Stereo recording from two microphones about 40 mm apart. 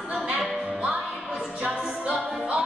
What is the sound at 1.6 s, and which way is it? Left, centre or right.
Music, right.